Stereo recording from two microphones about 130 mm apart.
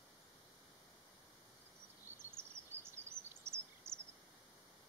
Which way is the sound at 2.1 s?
20° right (ahead or behind).